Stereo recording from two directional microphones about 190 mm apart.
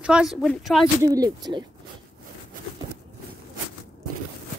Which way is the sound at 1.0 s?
20° right (ahead or behind).